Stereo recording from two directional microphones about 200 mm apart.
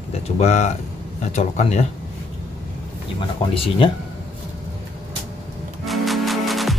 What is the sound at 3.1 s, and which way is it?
Speech, 25° left (ahead or behind).